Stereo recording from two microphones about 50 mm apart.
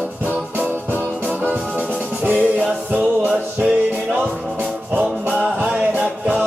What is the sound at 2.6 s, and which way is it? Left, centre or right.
Music, centre.